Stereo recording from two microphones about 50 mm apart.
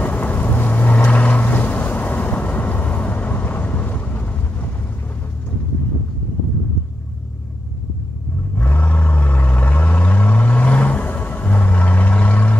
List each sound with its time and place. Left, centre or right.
0.0 s vehicle: left
8.5 s vehicle: left